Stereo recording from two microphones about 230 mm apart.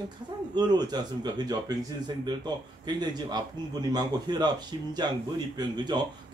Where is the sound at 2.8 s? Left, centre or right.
Centre.